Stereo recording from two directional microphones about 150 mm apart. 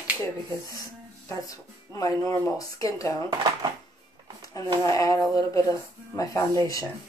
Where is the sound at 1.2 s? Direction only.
20° left (ahead or behind).